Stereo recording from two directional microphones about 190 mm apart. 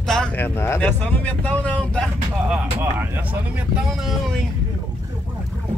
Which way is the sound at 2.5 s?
10° right (ahead or behind).